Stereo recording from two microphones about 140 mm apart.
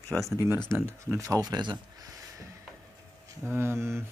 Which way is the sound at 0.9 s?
20° right (ahead or behind).